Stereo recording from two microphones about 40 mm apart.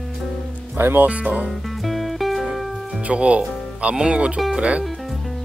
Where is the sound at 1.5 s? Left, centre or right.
Centre.